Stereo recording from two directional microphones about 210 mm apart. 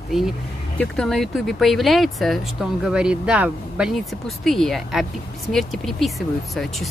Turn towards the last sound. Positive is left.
turn(degrees=0)  # may be behind; listen again after turning